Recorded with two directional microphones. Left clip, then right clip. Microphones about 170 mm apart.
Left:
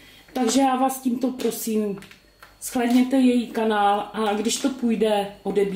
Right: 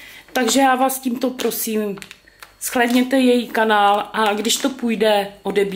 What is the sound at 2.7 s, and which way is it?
Speech, 25° left (ahead or behind).